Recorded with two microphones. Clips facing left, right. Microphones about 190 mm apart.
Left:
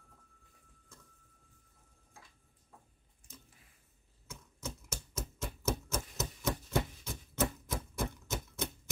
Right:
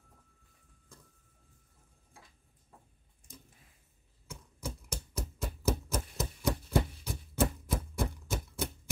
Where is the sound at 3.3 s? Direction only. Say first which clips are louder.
Right 3 dB; 15° right (ahead or behind).